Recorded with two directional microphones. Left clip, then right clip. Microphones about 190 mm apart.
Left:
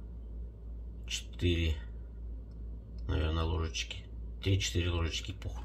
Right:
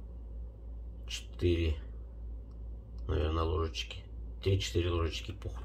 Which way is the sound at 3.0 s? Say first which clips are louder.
Right 3 dB; 15° right (ahead or behind).